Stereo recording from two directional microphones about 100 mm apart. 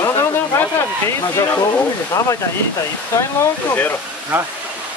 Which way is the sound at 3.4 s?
20° left (ahead or behind).